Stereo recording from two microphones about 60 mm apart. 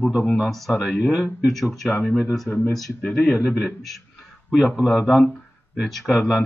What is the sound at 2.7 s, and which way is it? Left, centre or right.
Speech, centre.